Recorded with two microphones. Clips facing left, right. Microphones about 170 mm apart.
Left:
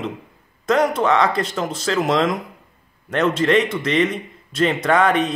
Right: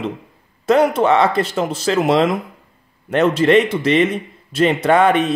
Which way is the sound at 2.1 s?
30° right (ahead or behind).